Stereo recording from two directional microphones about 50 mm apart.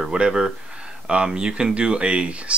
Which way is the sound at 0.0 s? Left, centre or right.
Centre.